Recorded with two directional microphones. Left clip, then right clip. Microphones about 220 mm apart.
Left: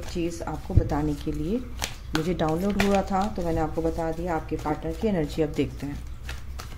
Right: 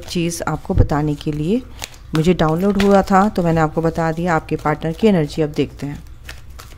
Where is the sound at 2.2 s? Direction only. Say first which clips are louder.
Right 11 dB; 30° right (ahead or behind).